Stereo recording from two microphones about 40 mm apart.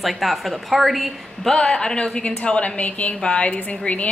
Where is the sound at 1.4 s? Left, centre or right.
Centre.